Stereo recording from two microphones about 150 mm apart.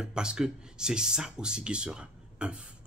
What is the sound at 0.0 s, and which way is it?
Speech, 5° right (ahead or behind).